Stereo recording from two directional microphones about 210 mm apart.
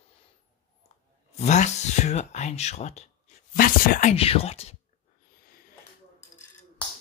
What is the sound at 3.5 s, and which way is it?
Speech, 45° left (ahead or behind).